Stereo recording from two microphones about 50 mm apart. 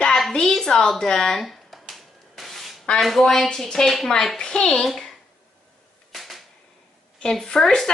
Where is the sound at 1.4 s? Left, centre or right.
Centre.